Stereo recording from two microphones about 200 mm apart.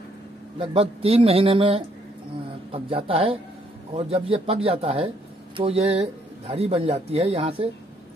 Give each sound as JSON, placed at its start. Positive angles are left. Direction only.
{"t": 0.6, "sound": "speech", "side_deg": -30}